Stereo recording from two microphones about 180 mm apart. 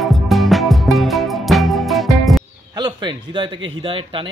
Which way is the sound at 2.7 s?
25° right (ahead or behind).